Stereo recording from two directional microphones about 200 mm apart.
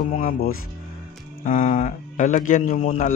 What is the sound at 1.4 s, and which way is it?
A man's voice, 40° left (ahead or behind).